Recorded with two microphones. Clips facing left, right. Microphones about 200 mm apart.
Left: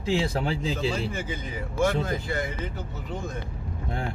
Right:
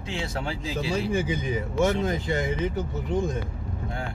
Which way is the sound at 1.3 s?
20° right (ahead or behind).